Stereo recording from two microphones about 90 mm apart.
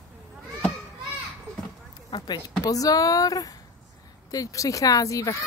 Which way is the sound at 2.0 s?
55° left (ahead or behind).